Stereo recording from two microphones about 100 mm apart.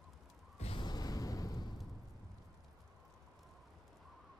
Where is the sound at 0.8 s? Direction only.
45° left (ahead or behind).